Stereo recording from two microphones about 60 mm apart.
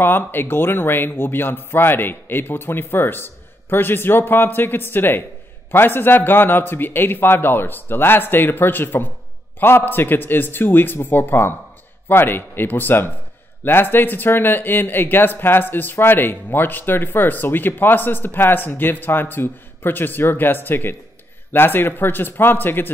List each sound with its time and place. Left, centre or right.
0.0 s speech: left